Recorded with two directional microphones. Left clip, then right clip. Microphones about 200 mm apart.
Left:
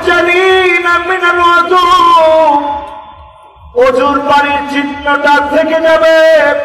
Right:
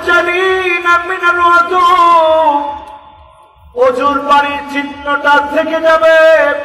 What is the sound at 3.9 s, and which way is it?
A man's voice, 50° right (ahead or behind).